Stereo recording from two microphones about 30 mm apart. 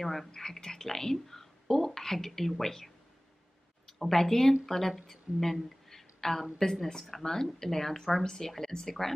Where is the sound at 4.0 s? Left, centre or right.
Centre.